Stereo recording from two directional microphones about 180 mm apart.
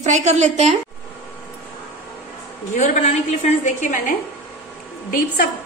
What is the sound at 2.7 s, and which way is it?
A woman's voice, 40° left (ahead or behind).